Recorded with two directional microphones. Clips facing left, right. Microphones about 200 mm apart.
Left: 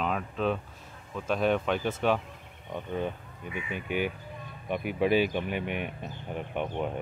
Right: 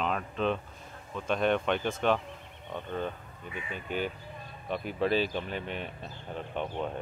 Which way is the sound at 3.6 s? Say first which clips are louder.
Left 3 dB; 15° left (ahead or behind).